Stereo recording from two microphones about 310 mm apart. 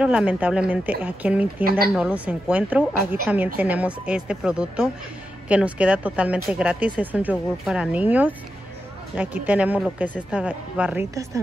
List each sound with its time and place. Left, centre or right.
0.0 s speech: centre
1.6 s speech: right
2.0 s speech: centre